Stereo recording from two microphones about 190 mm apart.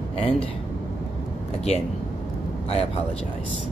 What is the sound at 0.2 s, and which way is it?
Speech, 30° left (ahead or behind).